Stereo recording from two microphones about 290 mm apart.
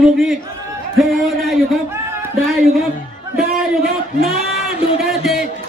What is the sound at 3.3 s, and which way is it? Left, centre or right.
Speech, centre.